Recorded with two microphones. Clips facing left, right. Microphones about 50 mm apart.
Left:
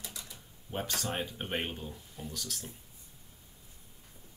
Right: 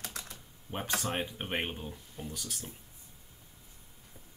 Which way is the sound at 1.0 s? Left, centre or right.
Centre.